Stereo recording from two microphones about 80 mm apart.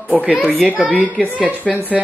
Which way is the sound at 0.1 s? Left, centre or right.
Centre.